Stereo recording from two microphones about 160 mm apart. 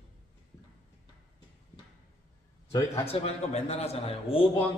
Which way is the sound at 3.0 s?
40° left (ahead or behind).